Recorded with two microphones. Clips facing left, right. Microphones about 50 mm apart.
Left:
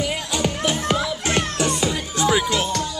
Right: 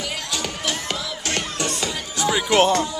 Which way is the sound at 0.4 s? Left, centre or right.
Centre.